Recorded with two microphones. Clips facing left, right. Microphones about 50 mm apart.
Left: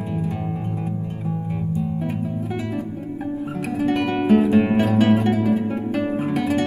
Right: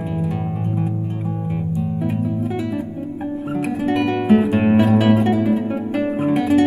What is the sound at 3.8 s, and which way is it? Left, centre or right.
Guitar, centre.